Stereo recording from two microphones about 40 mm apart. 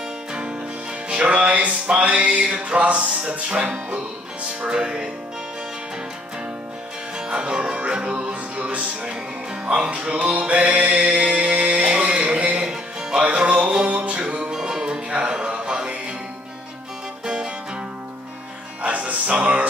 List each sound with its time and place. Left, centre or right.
0.3 s music: right
4.6 s speech: right
7.2 s music: right
18.8 s music: right